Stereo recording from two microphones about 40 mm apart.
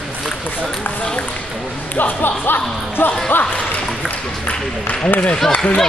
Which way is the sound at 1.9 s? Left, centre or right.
Left.